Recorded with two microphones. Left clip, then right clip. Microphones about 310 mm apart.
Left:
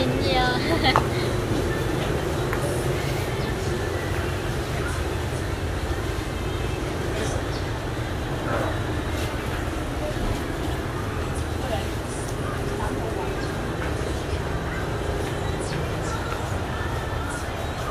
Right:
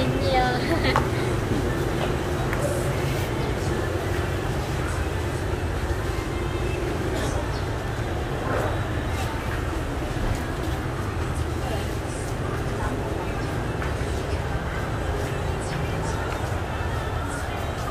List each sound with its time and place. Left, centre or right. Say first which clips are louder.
0.3 s vehicle: right 1 dB; left